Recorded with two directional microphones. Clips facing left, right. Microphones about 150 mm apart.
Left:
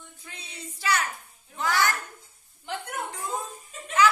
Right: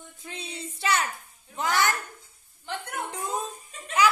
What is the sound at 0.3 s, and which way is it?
Music, 25° right (ahead or behind).